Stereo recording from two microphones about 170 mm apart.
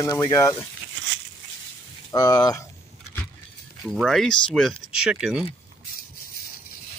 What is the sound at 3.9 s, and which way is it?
Speech, centre (ahead or behind).